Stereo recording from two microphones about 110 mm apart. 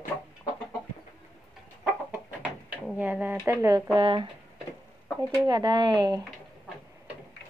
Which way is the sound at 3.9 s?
50° right (ahead or behind).